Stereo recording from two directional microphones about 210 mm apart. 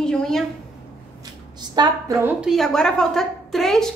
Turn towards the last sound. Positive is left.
turn(degrees=0)  # may be behind; listen again after turning